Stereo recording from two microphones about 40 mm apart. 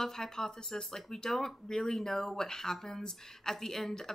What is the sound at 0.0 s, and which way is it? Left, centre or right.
Speech, centre.